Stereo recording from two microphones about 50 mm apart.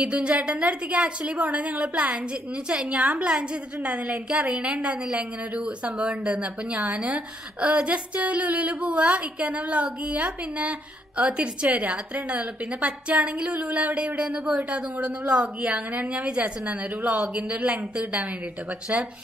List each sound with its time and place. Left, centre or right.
0.0 s a woman's voice: right